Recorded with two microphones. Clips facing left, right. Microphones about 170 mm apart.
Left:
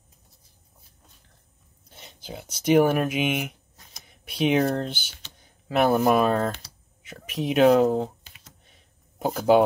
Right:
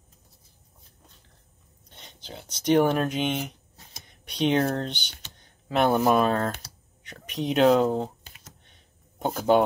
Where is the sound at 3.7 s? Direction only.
30° right (ahead or behind).